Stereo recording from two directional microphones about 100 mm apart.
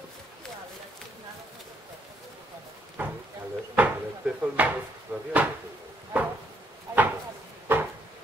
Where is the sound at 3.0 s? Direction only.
15° right (ahead or behind).